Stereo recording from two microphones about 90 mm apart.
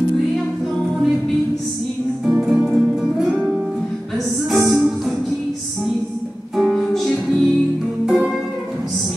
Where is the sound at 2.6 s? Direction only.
Centre (ahead or behind).